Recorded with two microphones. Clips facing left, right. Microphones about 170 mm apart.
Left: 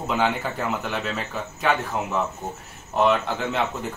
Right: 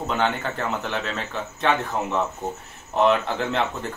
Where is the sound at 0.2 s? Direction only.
5° left (ahead or behind).